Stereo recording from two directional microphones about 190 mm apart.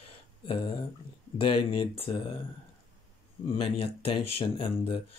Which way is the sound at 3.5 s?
30° left (ahead or behind).